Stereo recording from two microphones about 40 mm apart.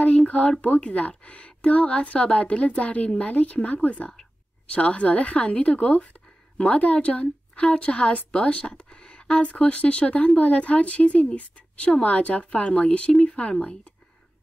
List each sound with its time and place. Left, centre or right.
0.3 s a woman's voice: left